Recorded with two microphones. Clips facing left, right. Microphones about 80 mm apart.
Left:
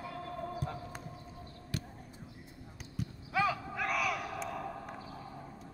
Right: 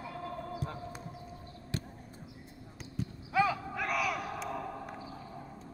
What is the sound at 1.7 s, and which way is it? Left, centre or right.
Basketball bounce, right.